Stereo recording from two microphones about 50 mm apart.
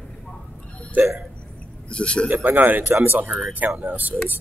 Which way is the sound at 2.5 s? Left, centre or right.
Right.